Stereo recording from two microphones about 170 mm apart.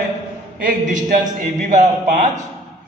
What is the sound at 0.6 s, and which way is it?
Speech, 50° right (ahead or behind).